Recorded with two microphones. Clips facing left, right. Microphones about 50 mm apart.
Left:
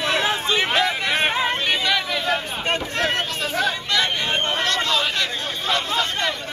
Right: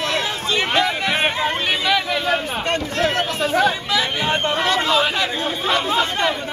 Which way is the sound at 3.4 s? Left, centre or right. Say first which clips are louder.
Right 5 dB; centre.